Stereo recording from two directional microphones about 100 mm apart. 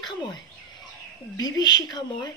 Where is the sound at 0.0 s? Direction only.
45° left (ahead or behind).